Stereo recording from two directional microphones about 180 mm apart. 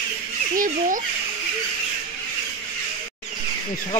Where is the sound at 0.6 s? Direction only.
50° right (ahead or behind).